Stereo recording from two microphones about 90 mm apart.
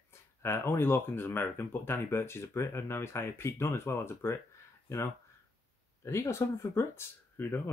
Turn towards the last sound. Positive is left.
turn(degrees=25)  # may be behind; listen again after turning